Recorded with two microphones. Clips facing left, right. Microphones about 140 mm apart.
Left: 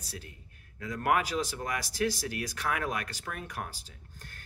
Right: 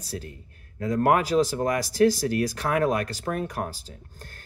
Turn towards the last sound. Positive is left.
turn(degrees=-35)  # may be behind; listen again after turning